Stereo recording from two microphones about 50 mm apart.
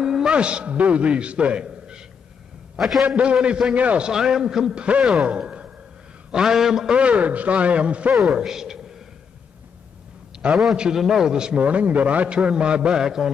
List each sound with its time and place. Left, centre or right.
0.0 s a sound: centre
0.3 s a man's voice: right
2.7 s a man's voice: centre
3.0 s a man's voice: right
5.4 s a sound: centre
6.3 s a man's voice: centre
7.0 s a man's voice: right
8.1 s a man's voice: centre
10.5 s a man's voice: centre
11.6 s a man's voice: right; by 13.3 s centre